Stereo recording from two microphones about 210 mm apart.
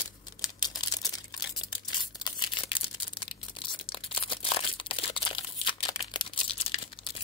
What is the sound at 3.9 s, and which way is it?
Crumpling, 25° left (ahead or behind).